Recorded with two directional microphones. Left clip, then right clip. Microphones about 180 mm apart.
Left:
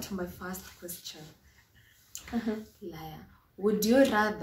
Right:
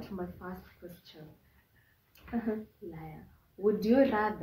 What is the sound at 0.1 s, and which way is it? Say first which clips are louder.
Speech: left 2 dB; 25° left (ahead or behind).